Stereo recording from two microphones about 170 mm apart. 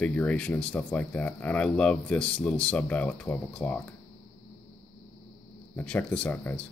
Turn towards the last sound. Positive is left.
turn(degrees=10)  # may be behind; listen again after turning